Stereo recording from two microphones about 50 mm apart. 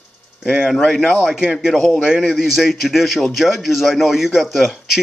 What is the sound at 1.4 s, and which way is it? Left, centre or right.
A man's voice, centre.